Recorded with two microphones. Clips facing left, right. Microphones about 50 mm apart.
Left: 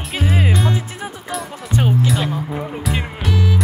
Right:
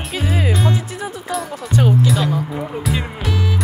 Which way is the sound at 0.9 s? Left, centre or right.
Left.